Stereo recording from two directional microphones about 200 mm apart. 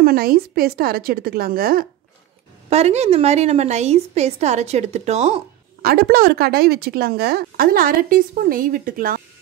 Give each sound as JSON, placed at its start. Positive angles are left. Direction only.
{"t": 0.0, "sound": "a woman's voice", "side_deg": -45}
{"t": 2.7, "sound": "a woman's voice", "side_deg": -30}
{"t": 5.8, "sound": "a woman's voice", "side_deg": -50}